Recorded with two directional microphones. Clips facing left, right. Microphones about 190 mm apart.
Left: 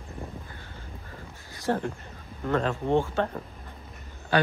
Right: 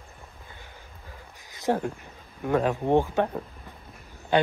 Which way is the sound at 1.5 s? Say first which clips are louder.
Right 2 dB; 20° right (ahead or behind).